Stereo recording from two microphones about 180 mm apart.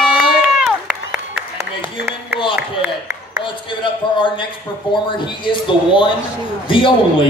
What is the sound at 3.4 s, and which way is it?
A man's voice, 25° left (ahead or behind).